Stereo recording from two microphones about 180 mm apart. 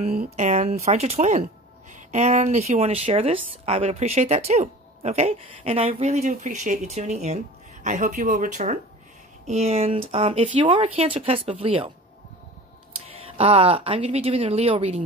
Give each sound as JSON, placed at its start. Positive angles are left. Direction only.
{"t": 0.2, "sound": "speech", "side_deg": -40}
{"t": 13.4, "sound": "speech", "side_deg": -30}